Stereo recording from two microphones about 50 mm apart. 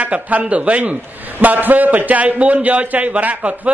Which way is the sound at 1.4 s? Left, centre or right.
Right.